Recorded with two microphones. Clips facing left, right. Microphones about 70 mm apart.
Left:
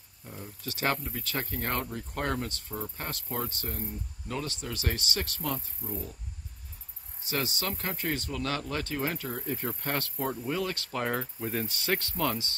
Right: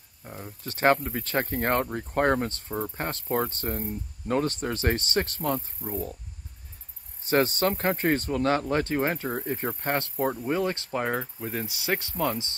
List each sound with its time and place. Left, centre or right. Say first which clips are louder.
0.2 s speech: right 2 dB; right
7.2 s speech: right 9 dB; right
11.1 s speech: right 2 dB; centre